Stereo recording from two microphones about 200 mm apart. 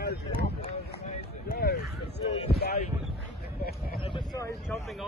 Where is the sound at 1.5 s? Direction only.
50° left (ahead or behind).